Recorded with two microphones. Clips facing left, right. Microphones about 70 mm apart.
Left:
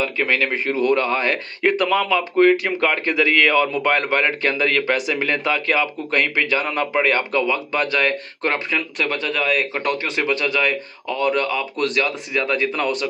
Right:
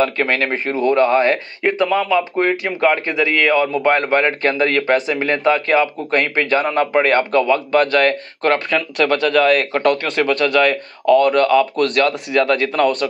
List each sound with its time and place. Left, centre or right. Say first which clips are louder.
0.2 s speech: right 2 dB; right
1.6 s speech: even; centre; by 8.5 s right
8.6 s speech: right 6 dB; right